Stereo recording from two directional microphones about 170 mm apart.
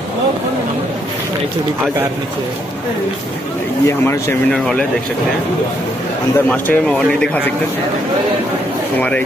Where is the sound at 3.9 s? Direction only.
15° left (ahead or behind).